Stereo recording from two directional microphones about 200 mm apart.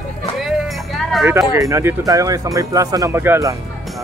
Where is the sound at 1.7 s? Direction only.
15° right (ahead or behind).